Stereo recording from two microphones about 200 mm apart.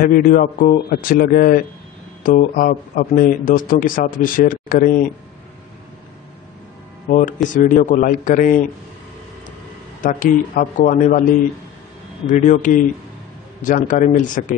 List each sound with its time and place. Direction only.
0.0 s a man's voice: 45° left (ahead or behind)
7.1 s a man's voice: 40° left (ahead or behind)
10.0 s a man's voice: 40° left (ahead or behind)
12.3 s a man's voice: 40° left (ahead or behind)